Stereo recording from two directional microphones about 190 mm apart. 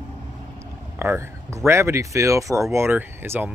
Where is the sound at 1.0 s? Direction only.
15° right (ahead or behind).